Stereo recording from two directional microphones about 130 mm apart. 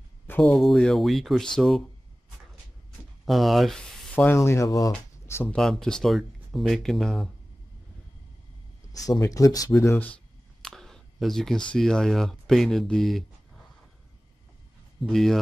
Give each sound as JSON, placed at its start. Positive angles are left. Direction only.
{"t": 0.3, "sound": "speech", "side_deg": 10}
{"t": 3.3, "sound": "speech", "side_deg": 0}
{"t": 4.4, "sound": "speech", "side_deg": 25}
{"t": 5.5, "sound": "speech", "side_deg": 5}
{"t": 9.2, "sound": "speech", "side_deg": 25}
{"t": 10.6, "sound": "a sound", "side_deg": 5}
{"t": 11.7, "sound": "speech", "side_deg": 5}
{"t": 15.0, "sound": "speech", "side_deg": 0}